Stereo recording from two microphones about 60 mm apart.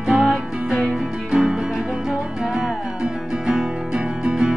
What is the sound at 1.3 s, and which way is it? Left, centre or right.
Music, centre.